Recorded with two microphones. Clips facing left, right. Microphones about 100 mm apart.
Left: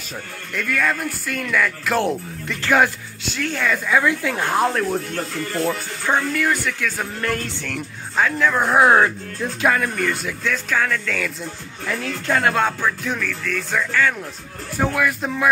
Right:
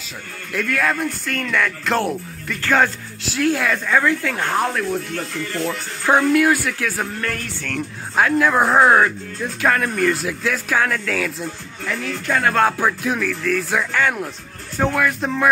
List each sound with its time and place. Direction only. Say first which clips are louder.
0.5 s speech: right 1 dB; centre (ahead or behind)
2.0 s speech: left 1 dB; 20° left (ahead or behind)
3.3 s speech: right 3 dB; 5° right (ahead or behind)
4.0 s speech: even; 15° left (ahead or behind)
6.0 s speech: right 5 dB; 10° right (ahead or behind)
7.2 s speech: left 2 dB; 15° left (ahead or behind)
8.2 s speech: right 3 dB; 10° right (ahead or behind)
8.7 s speech: left 1 dB; 15° left (ahead or behind)
9.7 s speech: right 2 dB; centre (ahead or behind)
12.3 s music: even; 20° left (ahead or behind)
12.7 s speech: right 3 dB; 10° right (ahead or behind)
14.8 s speech: right 2 dB; centre (ahead or behind)